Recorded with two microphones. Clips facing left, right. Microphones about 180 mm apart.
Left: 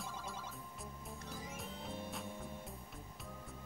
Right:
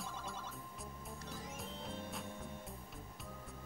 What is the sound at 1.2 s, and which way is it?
Music, centre (ahead or behind).